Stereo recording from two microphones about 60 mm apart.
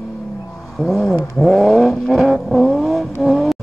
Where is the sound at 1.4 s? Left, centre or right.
Centre.